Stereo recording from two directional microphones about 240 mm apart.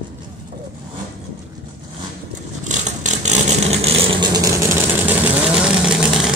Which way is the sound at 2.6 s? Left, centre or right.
Right.